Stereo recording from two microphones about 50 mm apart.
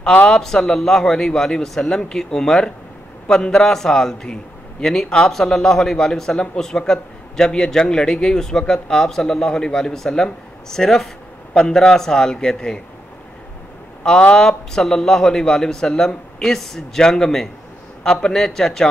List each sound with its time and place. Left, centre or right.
0.3 s a man's voice: centre
14.0 s a man's voice: centre